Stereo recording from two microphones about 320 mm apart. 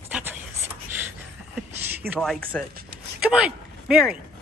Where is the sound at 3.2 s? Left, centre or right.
Centre.